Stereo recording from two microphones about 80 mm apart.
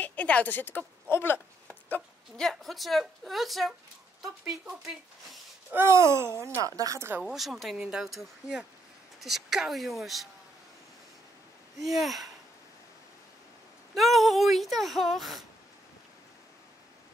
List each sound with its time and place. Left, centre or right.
0.0 s a woman's voice: centre
1.7 s chopping: left
2.3 s speech: centre
5.7 s speech: right
6.6 s speech: right
7.2 s speech: centre
11.8 s speech: centre
13.9 s speech: centre